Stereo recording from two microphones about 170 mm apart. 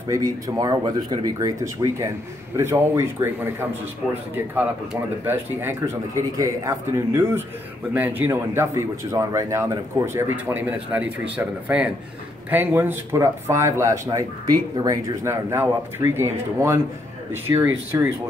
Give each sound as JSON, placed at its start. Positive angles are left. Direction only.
{"t": 0.1, "sound": "speech", "side_deg": -20}
{"t": 5.2, "sound": "speech", "side_deg": -15}